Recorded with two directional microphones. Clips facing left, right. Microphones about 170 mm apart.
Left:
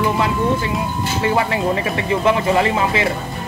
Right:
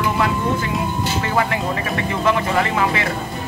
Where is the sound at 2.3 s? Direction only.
25° left (ahead or behind).